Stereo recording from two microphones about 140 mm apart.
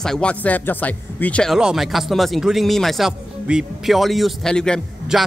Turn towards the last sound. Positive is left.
turn(degrees=5)  # may be behind; listen again after turning